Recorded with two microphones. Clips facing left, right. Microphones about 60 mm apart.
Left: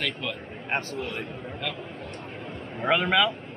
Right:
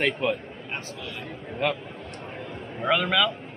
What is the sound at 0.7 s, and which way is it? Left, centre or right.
Speech, left.